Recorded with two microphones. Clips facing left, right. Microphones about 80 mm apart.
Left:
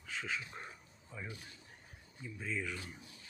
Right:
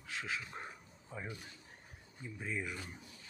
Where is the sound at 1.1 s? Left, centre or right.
Right.